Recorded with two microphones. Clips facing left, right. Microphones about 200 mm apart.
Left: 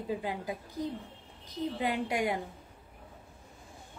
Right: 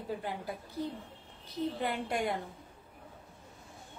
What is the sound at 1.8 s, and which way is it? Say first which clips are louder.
Speech: left 5 dB; 15° left (ahead or behind).